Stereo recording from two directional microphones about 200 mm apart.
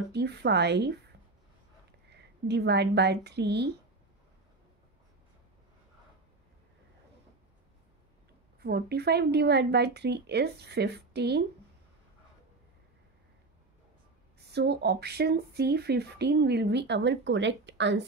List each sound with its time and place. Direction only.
0.1 s speech: 55° right (ahead or behind)
2.0 s a woman's voice: 55° right (ahead or behind)
8.5 s speech: 55° right (ahead or behind)
14.5 s speech: 55° right (ahead or behind)